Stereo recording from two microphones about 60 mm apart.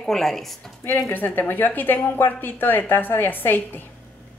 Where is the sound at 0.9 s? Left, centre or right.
Left.